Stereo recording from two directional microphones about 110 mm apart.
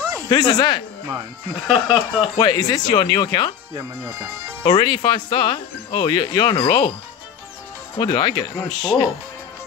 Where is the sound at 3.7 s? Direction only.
25° right (ahead or behind).